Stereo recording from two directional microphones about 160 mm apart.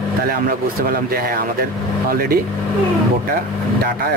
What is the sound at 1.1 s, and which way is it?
Speech, 75° right (ahead or behind).